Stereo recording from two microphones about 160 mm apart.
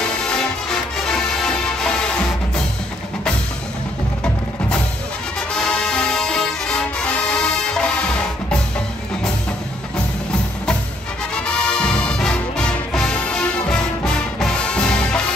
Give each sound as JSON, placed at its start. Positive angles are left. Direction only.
{"t": 0.2, "sound": "music", "side_deg": 5}
{"t": 5.5, "sound": "music", "side_deg": 5}
{"t": 11.3, "sound": "music", "side_deg": 5}